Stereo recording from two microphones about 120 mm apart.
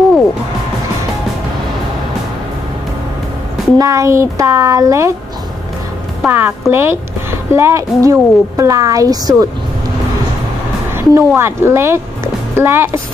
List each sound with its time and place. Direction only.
3.7 s a woman's voice: 30° right (ahead or behind)
6.2 s a woman's voice: 15° right (ahead or behind); by 9.5 s 30° right (ahead or behind)
10.9 s a woman's voice: 20° right (ahead or behind)